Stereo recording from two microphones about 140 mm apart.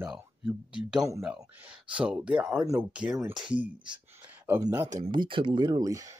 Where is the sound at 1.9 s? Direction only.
5° right (ahead or behind).